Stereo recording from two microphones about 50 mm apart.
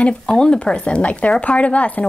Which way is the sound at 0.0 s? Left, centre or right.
Centre.